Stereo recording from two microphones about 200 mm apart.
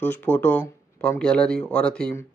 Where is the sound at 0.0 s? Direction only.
10° left (ahead or behind).